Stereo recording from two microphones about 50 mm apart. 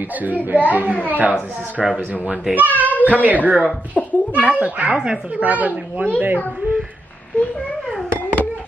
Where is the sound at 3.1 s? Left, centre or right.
Right.